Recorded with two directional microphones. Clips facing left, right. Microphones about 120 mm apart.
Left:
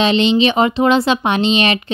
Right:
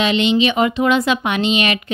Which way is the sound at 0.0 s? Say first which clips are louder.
Left 2 dB; 30° left (ahead or behind).